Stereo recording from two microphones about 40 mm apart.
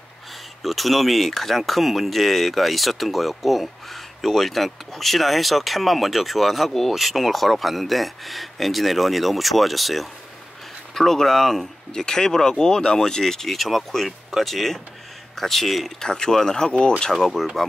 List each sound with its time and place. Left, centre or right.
0.6 s speech: centre
16.0 s speech: centre
17.1 s speech: centre